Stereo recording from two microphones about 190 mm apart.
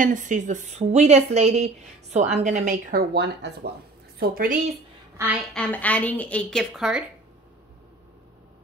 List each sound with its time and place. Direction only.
0.0 s a woman's voice: 40° right (ahead or behind); by 3.7 s 60° right (ahead or behind)
4.2 s a woman's voice: 50° right (ahead or behind)
5.1 s a woman's voice: 10° right (ahead or behind)
5.5 s a woman's voice: 5° left (ahead or behind)